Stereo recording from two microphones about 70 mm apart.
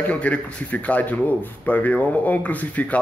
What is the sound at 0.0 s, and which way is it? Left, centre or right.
Speech, left.